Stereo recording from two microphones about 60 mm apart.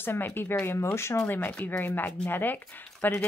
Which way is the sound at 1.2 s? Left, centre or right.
Left.